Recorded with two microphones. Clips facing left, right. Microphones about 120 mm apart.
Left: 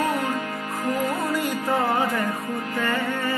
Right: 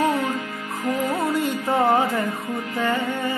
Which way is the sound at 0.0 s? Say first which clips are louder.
Right 2 dB; 25° right (ahead or behind).